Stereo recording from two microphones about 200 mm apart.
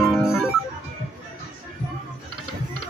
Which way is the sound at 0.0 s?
Centre (ahead or behind).